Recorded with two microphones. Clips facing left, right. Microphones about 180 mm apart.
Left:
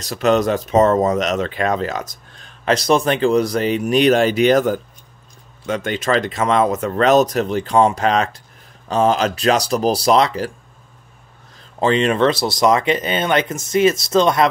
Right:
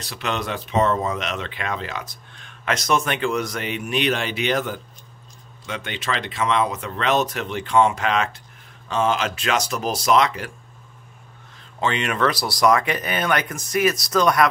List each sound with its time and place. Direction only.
0.0 s speech: 45° left (ahead or behind)
11.8 s speech: 35° left (ahead or behind)